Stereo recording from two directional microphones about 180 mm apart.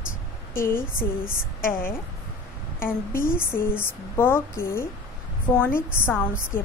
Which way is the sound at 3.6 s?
10° left (ahead or behind).